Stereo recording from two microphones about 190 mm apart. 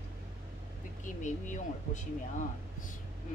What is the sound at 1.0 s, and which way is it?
Speech, 40° left (ahead or behind).